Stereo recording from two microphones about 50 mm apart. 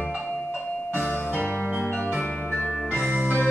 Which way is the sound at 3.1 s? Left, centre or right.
Right.